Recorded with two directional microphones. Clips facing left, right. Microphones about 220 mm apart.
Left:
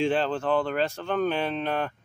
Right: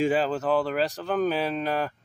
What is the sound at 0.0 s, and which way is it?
Speech, 5° right (ahead or behind).